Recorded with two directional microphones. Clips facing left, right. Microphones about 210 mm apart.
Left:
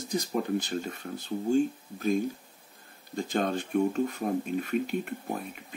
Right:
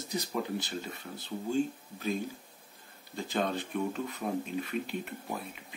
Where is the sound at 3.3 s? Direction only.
45° left (ahead or behind).